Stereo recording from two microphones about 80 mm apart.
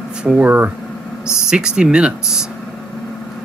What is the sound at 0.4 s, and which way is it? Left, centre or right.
Speech, right.